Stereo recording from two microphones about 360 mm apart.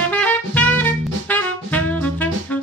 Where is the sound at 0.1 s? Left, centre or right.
Centre.